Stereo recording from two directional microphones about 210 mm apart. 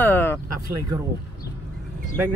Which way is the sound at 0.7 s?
15° right (ahead or behind).